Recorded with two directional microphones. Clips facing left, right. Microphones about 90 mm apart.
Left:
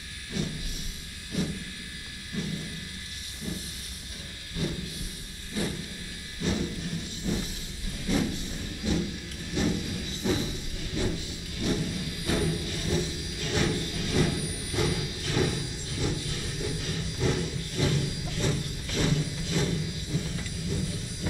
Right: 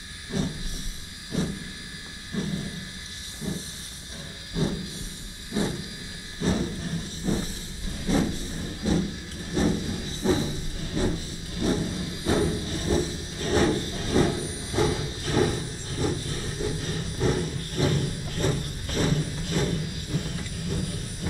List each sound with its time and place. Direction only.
0.3 s vehicle: 30° right (ahead or behind)
2.4 s steam: 35° right (ahead or behind)
3.5 s hiss: 25° right (ahead or behind)
5.5 s a sound: 25° right (ahead or behind)
6.4 s steam: 30° right (ahead or behind)
7.3 s vehicle: 35° right (ahead or behind)
9.5 s hiss: 35° right (ahead or behind)
11.5 s vehicle: 35° right (ahead or behind)